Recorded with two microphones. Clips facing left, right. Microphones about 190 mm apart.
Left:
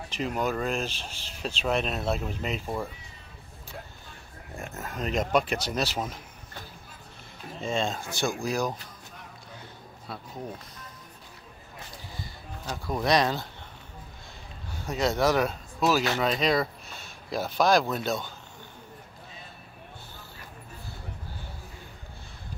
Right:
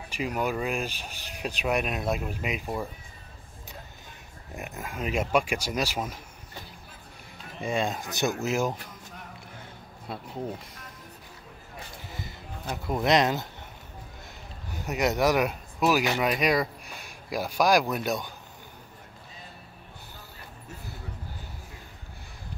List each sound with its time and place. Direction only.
0.1 s speech: 10° right (ahead or behind)
4.6 s speech: 15° right (ahead or behind)
7.6 s speech: 15° right (ahead or behind)
12.7 s speech: 20° right (ahead or behind)
14.9 s speech: 15° right (ahead or behind)